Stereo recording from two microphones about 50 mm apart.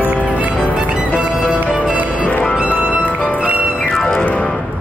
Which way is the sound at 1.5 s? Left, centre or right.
Right.